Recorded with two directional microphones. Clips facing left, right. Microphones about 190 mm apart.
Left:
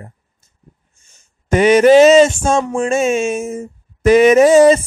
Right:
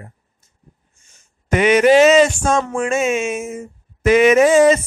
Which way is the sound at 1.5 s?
35° left (ahead or behind).